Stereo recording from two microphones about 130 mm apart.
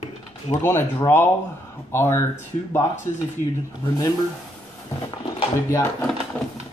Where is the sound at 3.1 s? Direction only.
80° right.